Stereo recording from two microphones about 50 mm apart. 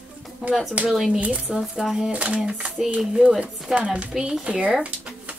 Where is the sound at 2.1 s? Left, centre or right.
Right.